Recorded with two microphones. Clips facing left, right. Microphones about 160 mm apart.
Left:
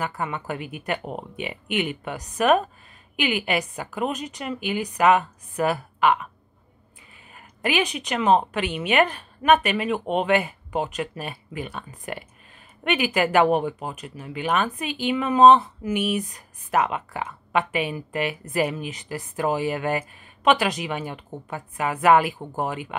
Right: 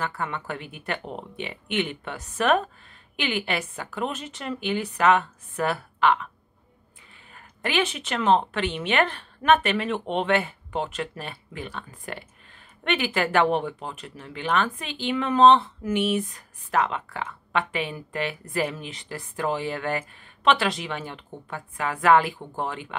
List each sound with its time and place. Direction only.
0.0 s speech: 15° left (ahead or behind)
7.3 s speech: 10° left (ahead or behind)